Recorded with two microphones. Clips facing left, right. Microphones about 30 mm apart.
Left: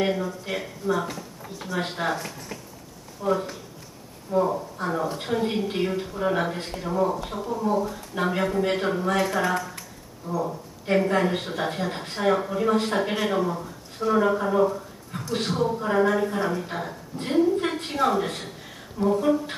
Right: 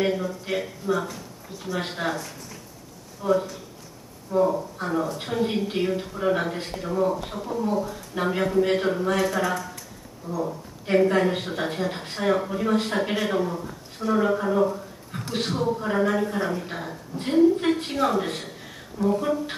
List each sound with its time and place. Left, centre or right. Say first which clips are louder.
0.0 s a woman's voice: even; centre
3.2 s a woman's voice: right 2 dB; centre; by 10.4 s left
10.9 s a woman's voice: right 2 dB; centre